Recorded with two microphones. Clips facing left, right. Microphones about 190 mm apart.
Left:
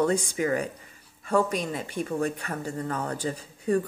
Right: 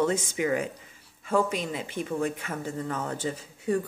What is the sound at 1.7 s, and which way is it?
Speech, 15° right (ahead or behind).